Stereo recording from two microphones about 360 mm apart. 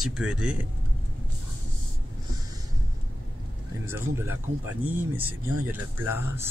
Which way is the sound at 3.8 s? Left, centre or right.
Centre.